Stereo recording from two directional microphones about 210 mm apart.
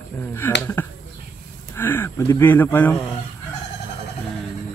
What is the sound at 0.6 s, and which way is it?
Speech, 10° left (ahead or behind).